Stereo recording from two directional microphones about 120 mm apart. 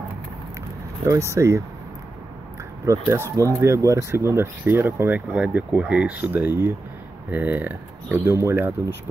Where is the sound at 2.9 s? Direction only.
25° right (ahead or behind).